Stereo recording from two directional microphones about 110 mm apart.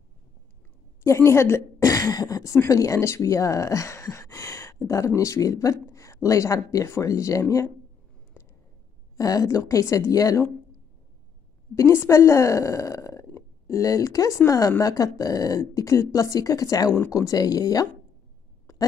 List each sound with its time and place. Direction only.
1.0 s a woman's voice: 25° left (ahead or behind)
9.1 s a woman's voice: 35° left (ahead or behind)
11.7 s a woman's voice: 25° left (ahead or behind)
18.7 s a sound: 25° left (ahead or behind)